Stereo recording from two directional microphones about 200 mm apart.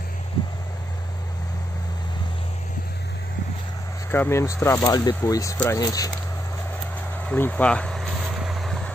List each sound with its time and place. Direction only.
4.1 s speech: 10° left (ahead or behind)
7.2 s vehicle: 10° left (ahead or behind)